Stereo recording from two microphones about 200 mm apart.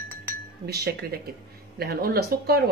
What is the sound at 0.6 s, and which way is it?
Speech, 50° right (ahead or behind).